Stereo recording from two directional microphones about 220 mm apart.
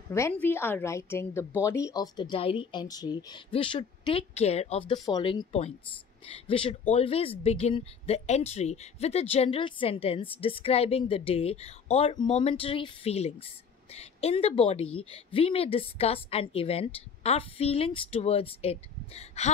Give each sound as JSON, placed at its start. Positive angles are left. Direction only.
{"t": 0.1, "sound": "a woman's voice", "side_deg": 10}